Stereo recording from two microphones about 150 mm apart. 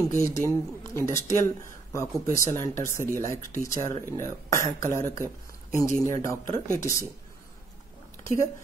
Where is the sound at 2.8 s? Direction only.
20° left (ahead or behind).